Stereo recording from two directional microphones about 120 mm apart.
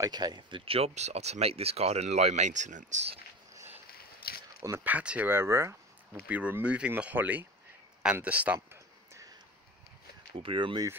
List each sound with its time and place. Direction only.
0.0 s speech: 35° right (ahead or behind); by 3.0 s 90° right
4.6 s speech: 20° right (ahead or behind)
6.2 s speech: 10° right (ahead or behind)
8.5 s a sound: 25° right (ahead or behind)
10.3 s speech: 45° right (ahead or behind)